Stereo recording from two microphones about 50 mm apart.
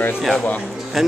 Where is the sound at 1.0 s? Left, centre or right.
Centre.